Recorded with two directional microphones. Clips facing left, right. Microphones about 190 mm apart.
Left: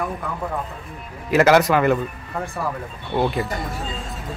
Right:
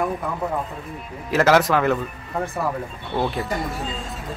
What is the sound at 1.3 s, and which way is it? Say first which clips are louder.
Speech: left 2 dB; centre (ahead or behind).